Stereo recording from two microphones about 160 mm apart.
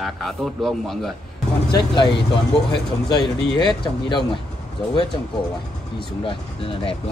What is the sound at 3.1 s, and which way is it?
Speech, 25° left (ahead or behind).